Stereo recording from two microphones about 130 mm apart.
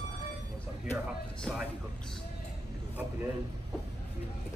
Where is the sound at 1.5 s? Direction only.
5° left (ahead or behind).